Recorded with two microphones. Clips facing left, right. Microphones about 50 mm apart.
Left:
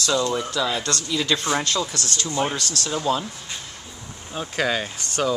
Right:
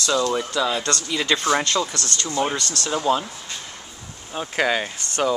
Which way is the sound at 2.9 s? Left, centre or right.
Centre.